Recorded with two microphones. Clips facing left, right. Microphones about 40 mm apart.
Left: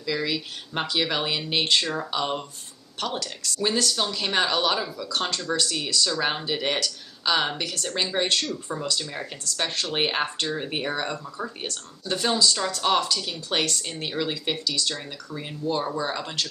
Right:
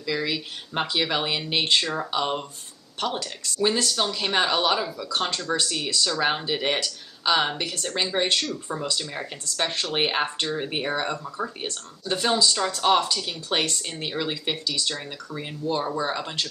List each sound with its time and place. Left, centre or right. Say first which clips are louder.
0.0 s speech: even; centre
14.9 s speech: right 1 dB; centre